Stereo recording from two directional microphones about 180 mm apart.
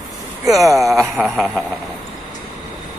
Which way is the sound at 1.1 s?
Centre (ahead or behind).